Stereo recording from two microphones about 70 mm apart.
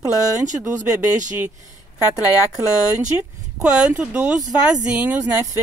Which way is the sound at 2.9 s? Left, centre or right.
Centre.